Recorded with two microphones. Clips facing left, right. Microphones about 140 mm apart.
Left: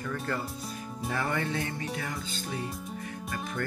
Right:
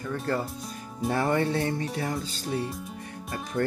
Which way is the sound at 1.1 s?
35° right (ahead or behind).